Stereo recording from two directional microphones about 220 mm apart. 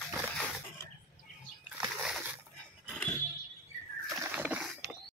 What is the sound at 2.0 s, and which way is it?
Dog, 5° right (ahead or behind).